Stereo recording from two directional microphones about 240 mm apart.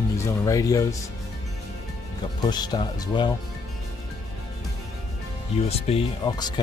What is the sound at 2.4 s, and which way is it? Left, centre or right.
Speech, centre.